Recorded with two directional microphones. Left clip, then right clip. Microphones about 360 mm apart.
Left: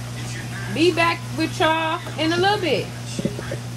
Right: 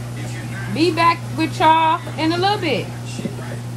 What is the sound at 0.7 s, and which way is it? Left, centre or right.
Speech, centre.